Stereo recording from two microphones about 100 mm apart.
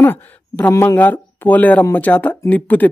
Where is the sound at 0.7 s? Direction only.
30° left (ahead or behind).